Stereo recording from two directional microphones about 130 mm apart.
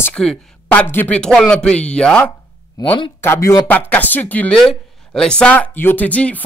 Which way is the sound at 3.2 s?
20° left (ahead or behind).